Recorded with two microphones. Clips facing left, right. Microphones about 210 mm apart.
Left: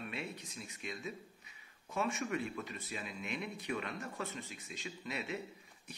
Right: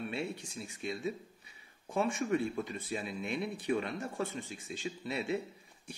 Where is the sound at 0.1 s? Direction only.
30° right (ahead or behind).